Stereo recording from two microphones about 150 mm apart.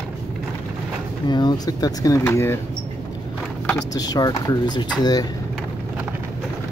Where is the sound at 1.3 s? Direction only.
30° left (ahead or behind).